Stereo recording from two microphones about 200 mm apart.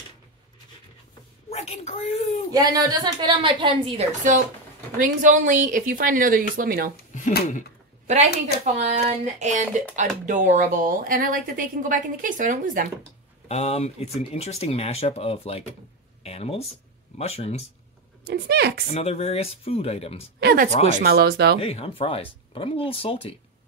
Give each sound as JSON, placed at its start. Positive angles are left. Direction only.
{"t": 1.5, "sound": "a woman's voice", "side_deg": 30}
{"t": 2.5, "sound": "a woman's voice", "side_deg": -20}
{"t": 5.0, "sound": "speech", "side_deg": -40}
{"t": 7.2, "sound": "speech", "side_deg": 40}
{"t": 8.1, "sound": "a woman's voice", "side_deg": -35}
{"t": 13.5, "sound": "speech", "side_deg": 30}
{"t": 18.2, "sound": "speech", "side_deg": -55}
{"t": 18.9, "sound": "speech", "side_deg": 30}
{"t": 20.3, "sound": "speech", "side_deg": -50}
{"t": 21.5, "sound": "speech", "side_deg": 30}